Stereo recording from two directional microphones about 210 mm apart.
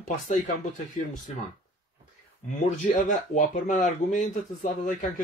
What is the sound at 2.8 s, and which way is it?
Speech, 35° left (ahead or behind).